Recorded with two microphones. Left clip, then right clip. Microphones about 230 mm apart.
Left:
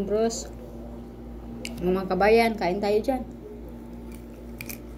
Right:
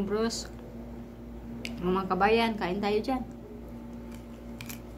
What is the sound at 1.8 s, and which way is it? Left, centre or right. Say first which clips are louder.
Speech: left 4 dB; centre.